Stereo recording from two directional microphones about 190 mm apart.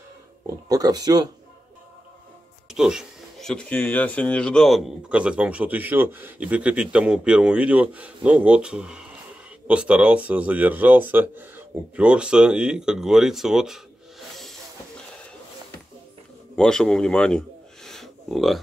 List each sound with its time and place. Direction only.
0.7 s speech: 20° right (ahead or behind)
2.7 s speech: 5° right (ahead or behind)
16.5 s speech: 5° left (ahead or behind)
17.8 s a sound: centre (ahead or behind)